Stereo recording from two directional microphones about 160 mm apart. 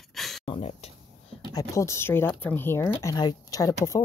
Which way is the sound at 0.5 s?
40° left (ahead or behind).